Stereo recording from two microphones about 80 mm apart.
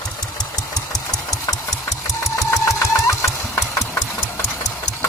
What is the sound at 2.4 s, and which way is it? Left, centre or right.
Engine, left.